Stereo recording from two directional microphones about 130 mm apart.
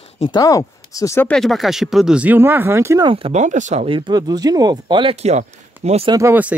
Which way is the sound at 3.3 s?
70° right (ahead or behind).